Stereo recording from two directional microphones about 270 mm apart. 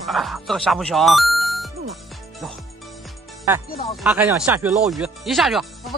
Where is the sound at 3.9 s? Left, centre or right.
Centre.